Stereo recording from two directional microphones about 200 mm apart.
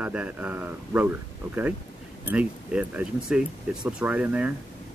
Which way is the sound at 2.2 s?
5° right (ahead or behind).